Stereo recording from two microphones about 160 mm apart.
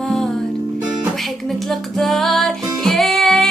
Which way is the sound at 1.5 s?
Centre (ahead or behind).